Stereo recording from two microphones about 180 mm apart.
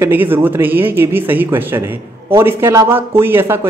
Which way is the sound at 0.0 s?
10° right (ahead or behind).